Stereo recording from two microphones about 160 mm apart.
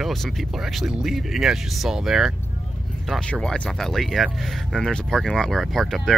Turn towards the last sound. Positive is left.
turn(degrees=0)  # may be behind; listen again after turning